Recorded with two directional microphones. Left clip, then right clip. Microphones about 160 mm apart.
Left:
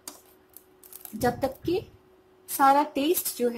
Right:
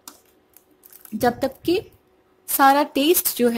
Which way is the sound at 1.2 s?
50° right (ahead or behind).